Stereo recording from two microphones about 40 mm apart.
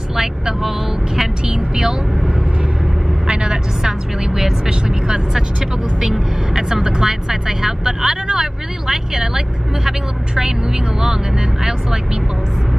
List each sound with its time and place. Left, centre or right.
0.1 s vehicle: centre
5.9 s speech: centre